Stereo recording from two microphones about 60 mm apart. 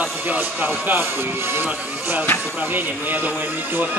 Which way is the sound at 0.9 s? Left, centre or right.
Right.